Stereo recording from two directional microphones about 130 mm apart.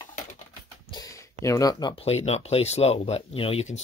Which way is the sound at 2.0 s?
50° left (ahead or behind).